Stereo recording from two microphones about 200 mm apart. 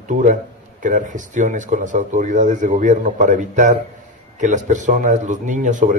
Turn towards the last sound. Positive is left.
turn(degrees=-40)  # may be behind; listen again after turning